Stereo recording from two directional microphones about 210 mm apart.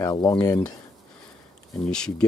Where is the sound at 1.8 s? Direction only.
5° left (ahead or behind).